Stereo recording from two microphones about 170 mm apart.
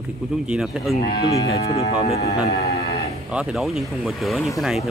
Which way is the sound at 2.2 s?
70° left (ahead or behind).